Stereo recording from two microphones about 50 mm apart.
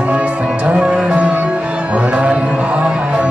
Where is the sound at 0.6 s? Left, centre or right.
Right.